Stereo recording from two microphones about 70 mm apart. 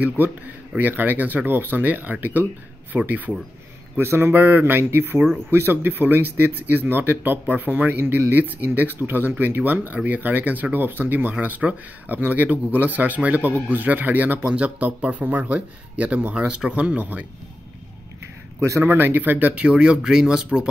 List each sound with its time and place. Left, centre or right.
0.7 s speech: right
3.9 s speech: right
18.6 s speech: right
18.9 s speech: right; by 20.6 s centre